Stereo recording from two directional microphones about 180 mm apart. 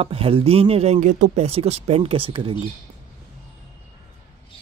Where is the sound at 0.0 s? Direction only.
35° right (ahead or behind).